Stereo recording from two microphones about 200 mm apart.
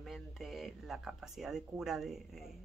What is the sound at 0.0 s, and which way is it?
Speech, centre (ahead or behind).